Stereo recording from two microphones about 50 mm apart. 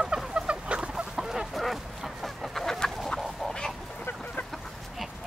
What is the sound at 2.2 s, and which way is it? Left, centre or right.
Chicken, centre.